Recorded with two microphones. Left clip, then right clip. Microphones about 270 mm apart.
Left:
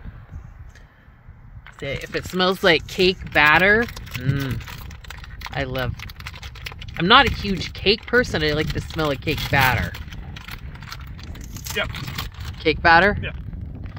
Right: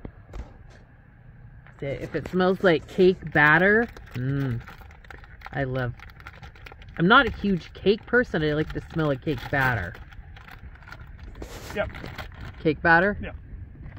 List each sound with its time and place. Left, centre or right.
1.8 s speech: centre
12.5 s speech: left